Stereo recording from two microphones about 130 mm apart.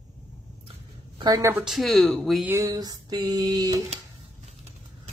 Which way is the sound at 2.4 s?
25° right (ahead or behind).